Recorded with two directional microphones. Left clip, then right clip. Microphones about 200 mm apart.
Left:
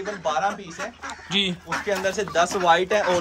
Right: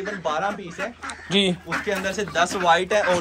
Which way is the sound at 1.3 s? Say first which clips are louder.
Right 2 dB; 10° left (ahead or behind).